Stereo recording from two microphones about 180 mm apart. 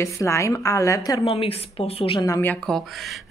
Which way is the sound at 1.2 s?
30° left (ahead or behind).